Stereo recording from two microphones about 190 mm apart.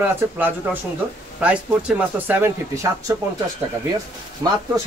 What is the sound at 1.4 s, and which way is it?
Speech, 5° right (ahead or behind).